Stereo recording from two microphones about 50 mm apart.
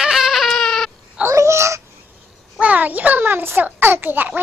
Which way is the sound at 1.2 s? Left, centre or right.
Right.